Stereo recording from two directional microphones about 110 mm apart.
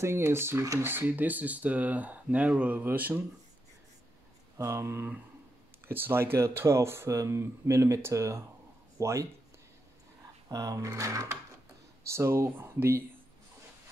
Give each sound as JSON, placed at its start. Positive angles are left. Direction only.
{"t": 0.0, "sound": "speech", "side_deg": -25}
{"t": 4.6, "sound": "speech", "side_deg": -25}
{"t": 10.5, "sound": "speech", "side_deg": -30}